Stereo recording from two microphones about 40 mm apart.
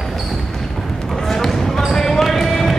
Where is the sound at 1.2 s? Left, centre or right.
Centre.